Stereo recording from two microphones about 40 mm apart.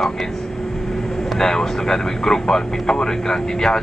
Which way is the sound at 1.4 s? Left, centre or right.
Centre.